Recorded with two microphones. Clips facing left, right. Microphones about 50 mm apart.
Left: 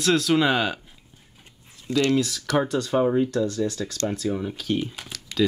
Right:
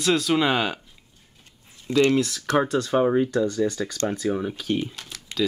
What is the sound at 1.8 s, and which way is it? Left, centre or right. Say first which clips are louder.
Speech: right 2 dB; right.